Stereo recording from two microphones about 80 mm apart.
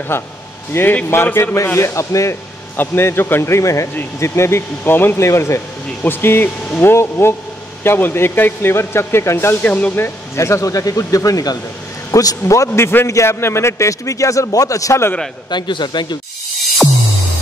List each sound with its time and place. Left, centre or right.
0.1 s speech: left
2.8 s speech: left
15.5 s a man's voice: left